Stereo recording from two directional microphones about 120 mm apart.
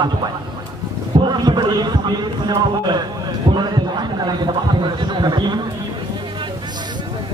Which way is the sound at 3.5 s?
35° right (ahead or behind).